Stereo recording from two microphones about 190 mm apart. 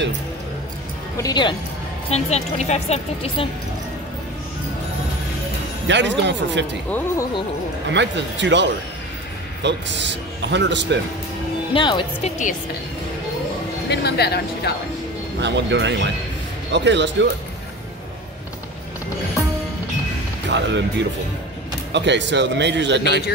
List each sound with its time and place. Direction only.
1.1 s speech: 20° left (ahead or behind)
2.0 s a woman's voice: 35° left (ahead or behind)
5.9 s a man's voice: 70° right (ahead or behind)
7.9 s a man's voice: 70° right (ahead or behind)
11.7 s speech: 25° left (ahead or behind)
13.8 s speech: 60° left (ahead or behind)
15.4 s a man's voice: 70° right (ahead or behind)
20.4 s a man's voice: 70° right (ahead or behind)